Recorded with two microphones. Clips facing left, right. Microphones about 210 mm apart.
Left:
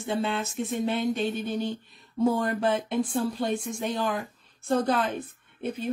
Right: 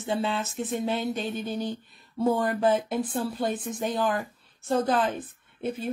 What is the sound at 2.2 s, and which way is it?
Speech, centre (ahead or behind).